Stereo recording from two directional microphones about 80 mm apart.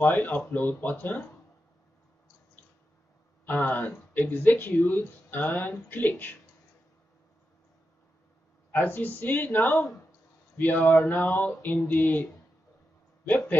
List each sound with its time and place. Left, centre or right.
0.0 s speech: left
3.4 s speech: left
8.7 s a man's voice: left